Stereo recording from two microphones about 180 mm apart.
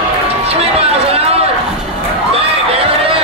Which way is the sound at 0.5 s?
35° right (ahead or behind).